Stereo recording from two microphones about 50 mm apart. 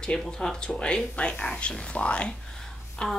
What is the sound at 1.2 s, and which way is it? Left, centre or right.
Female singing, left.